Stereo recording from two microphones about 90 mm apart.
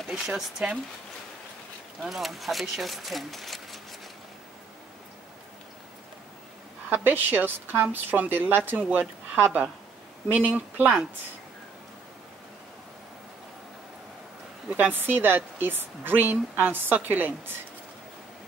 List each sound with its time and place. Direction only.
0.0 s speech: 5° right (ahead or behind)
2.0 s speech: centre (ahead or behind)
6.9 s a woman's voice: 20° right (ahead or behind)
14.7 s a woman's voice: 20° right (ahead or behind)